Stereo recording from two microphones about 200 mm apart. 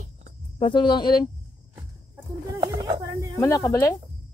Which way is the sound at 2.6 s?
15° right (ahead or behind).